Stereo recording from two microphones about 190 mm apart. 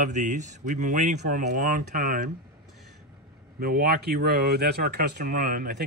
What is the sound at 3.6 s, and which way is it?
Speech, 50° right (ahead or behind).